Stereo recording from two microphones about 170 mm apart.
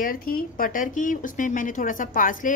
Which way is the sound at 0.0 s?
55° left (ahead or behind).